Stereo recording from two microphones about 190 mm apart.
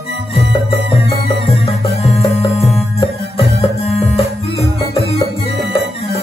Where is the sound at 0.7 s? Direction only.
60° right (ahead or behind).